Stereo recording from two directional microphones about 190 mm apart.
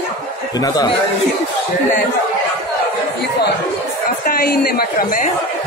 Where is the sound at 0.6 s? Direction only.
20° left (ahead or behind).